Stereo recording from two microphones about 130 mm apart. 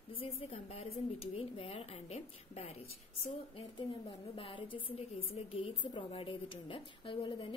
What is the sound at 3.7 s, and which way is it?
A woman's voice, 40° left (ahead or behind).